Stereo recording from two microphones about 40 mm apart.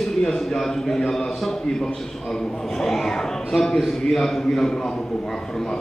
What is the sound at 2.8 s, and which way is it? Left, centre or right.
A man's voice, centre.